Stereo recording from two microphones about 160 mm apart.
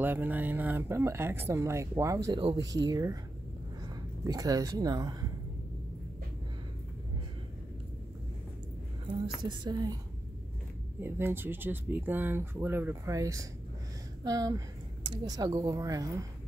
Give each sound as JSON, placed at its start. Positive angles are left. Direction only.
{"t": 0.0, "sound": "speech", "side_deg": -10}
{"t": 9.0, "sound": "speech", "side_deg": -30}
{"t": 11.0, "sound": "speech", "side_deg": -15}